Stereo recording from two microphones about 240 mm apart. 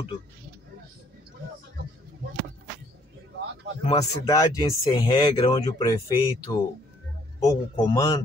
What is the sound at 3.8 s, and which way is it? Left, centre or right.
Speech, centre.